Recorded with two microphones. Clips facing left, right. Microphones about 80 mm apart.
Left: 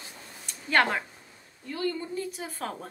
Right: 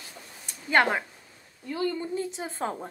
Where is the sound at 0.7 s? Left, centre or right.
Centre.